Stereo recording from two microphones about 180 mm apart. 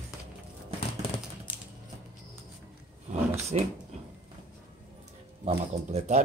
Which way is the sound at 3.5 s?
35° right (ahead or behind).